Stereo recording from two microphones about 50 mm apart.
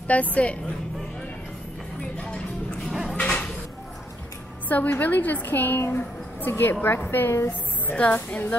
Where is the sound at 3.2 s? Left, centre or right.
Centre.